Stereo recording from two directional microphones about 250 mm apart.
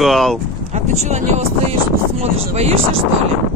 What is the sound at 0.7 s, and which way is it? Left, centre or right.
Speech, right.